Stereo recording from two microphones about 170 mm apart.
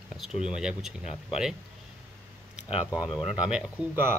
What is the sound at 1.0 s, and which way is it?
Speech, 40° left (ahead or behind).